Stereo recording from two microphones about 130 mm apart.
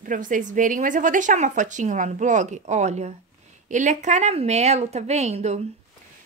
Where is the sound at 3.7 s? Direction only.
70° right (ahead or behind).